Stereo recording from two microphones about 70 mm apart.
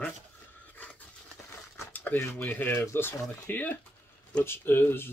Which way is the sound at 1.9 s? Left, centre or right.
Left.